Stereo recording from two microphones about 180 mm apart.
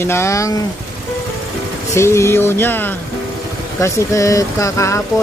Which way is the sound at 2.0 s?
15° left (ahead or behind).